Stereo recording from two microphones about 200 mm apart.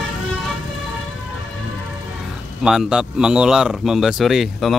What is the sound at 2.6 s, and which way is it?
A man's voice, centre (ahead or behind).